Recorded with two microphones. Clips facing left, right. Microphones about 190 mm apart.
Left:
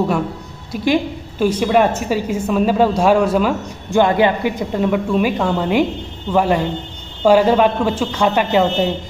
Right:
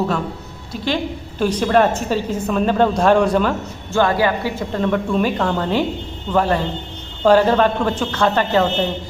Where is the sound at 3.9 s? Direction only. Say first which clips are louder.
Left 3 dB; 20° left (ahead or behind).